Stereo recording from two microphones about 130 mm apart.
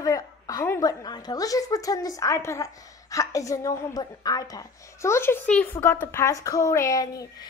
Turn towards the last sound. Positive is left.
turn(degrees=30)  # may be behind; listen again after turning